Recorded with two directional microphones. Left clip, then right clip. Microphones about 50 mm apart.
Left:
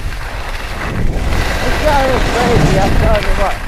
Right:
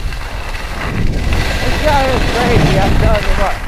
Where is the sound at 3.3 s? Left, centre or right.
Left.